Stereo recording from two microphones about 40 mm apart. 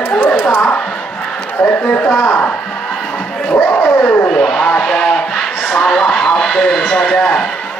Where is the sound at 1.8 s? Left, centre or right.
Left.